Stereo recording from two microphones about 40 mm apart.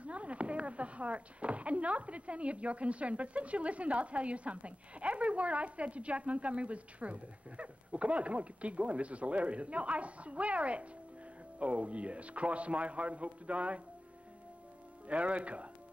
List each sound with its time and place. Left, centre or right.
0.0 s speech: right
15.0 s speech: right